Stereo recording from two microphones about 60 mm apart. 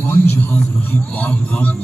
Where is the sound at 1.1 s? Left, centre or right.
Left.